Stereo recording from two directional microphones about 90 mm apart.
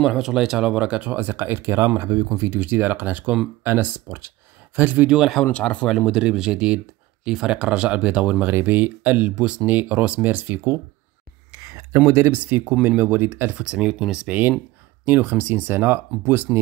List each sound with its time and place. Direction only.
0.0 s speech: 5° right (ahead or behind)
5.3 s speech: 10° left (ahead or behind)
5.9 s speech: centre (ahead or behind); by 10.8 s 25° right (ahead or behind)
12.1 s speech: 25° right (ahead or behind)